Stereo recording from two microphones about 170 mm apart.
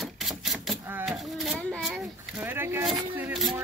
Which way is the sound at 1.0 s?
Centre (ahead or behind).